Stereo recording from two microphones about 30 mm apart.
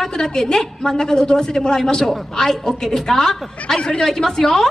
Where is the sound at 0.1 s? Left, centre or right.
Centre.